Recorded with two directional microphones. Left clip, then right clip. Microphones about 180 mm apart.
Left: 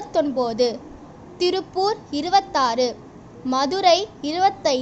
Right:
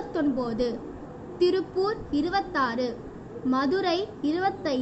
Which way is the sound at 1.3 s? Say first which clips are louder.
Left 2 dB; 65° left (ahead or behind).